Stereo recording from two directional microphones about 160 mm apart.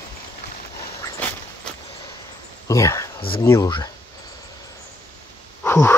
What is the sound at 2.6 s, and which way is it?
Speech, 20° left (ahead or behind).